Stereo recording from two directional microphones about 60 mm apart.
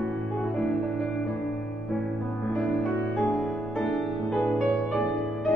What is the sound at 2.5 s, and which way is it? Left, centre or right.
Music, centre.